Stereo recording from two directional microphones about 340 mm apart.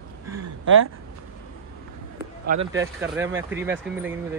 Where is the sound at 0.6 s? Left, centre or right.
Right.